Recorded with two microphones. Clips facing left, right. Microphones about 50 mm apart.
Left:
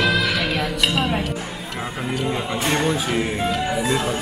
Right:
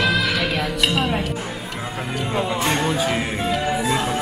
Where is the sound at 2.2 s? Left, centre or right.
Centre.